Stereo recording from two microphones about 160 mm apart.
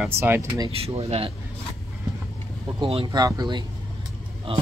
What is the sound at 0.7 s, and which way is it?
Speech, 40° right (ahead or behind).